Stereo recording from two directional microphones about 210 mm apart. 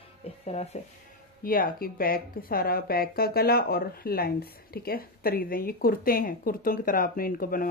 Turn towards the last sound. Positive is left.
turn(degrees=40)  # may be behind; listen again after turning